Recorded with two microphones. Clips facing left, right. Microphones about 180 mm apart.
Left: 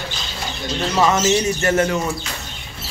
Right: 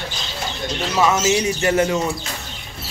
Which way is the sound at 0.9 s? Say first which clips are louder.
Left 1 dB; 5° right (ahead or behind).